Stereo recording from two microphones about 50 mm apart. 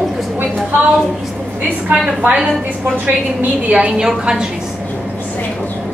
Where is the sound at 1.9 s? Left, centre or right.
Right.